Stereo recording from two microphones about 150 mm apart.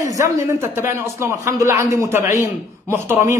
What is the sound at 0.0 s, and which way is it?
A man's voice, 20° right (ahead or behind).